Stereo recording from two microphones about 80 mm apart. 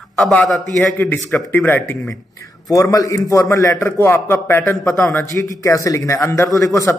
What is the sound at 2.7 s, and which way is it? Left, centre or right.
A man's voice, left.